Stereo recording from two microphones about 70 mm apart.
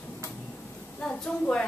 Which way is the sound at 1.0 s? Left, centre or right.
Centre.